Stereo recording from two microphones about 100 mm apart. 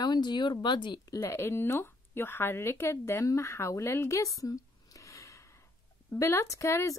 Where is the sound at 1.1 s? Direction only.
30° left (ahead or behind).